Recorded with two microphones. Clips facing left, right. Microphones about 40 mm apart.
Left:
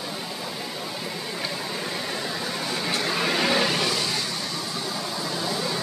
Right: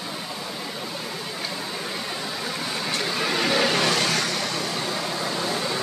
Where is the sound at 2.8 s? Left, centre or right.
Centre.